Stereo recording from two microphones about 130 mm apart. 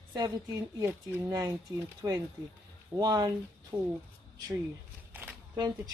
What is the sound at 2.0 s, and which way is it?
A woman's voice, 30° right (ahead or behind).